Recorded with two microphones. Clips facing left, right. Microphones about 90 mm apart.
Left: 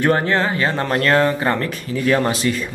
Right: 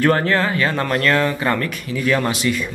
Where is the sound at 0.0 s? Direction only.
20° left (ahead or behind).